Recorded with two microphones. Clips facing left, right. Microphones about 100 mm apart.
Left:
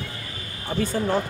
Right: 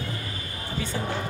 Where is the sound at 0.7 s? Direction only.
50° left (ahead or behind).